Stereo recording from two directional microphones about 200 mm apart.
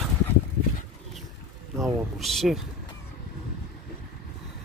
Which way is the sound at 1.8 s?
Centre (ahead or behind).